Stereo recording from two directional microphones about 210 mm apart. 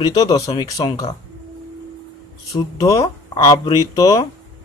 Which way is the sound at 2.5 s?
15° left (ahead or behind).